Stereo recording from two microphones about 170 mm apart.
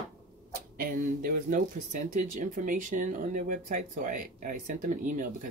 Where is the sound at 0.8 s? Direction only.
55° right (ahead or behind).